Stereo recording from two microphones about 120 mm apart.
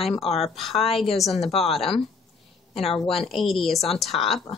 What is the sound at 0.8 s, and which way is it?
Speech, 55° left (ahead or behind).